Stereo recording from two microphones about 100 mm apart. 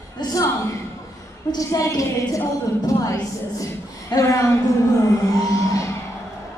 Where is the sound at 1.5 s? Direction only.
35° left (ahead or behind).